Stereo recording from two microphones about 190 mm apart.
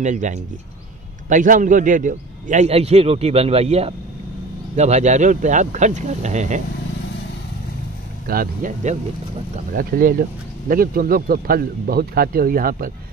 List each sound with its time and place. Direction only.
0.0 s a man's voice: 40° right (ahead or behind)
8.3 s a man's voice: 45° right (ahead or behind)